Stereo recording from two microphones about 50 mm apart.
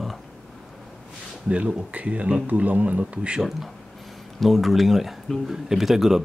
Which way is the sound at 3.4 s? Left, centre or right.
Centre.